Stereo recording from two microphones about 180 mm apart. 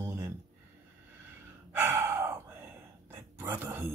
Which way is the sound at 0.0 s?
15° right (ahead or behind).